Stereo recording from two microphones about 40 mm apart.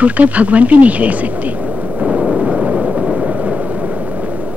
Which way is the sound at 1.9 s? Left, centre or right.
Right.